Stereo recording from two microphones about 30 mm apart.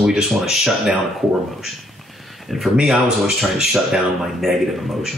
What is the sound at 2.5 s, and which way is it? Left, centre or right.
Speech, centre.